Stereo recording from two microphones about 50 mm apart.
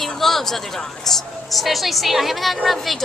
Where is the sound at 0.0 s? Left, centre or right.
Centre.